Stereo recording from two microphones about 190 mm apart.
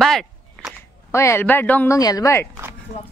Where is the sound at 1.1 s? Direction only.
15° left (ahead or behind).